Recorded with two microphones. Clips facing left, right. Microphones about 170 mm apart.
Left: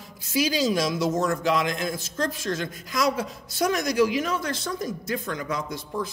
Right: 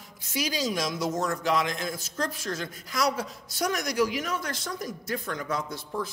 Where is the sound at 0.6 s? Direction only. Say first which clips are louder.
Left 5 dB; 30° left (ahead or behind).